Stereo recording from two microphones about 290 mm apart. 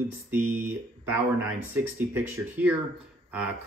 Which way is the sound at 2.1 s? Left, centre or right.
Centre.